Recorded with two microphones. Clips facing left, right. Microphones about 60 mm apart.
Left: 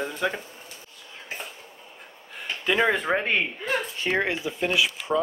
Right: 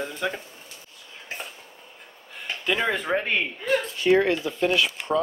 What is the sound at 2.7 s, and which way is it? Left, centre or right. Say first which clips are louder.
Speech: left 2 dB; centre.